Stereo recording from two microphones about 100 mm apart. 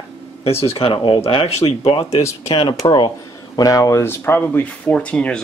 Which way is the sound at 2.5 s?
55° left (ahead or behind).